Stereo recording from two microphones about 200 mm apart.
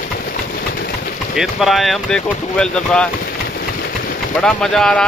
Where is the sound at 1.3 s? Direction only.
Centre (ahead or behind).